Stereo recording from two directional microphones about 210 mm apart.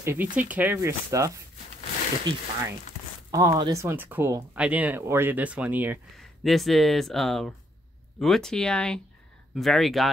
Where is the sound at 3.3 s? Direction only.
15° right (ahead or behind).